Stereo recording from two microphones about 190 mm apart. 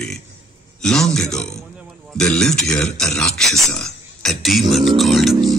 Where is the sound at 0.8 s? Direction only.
Centre (ahead or behind).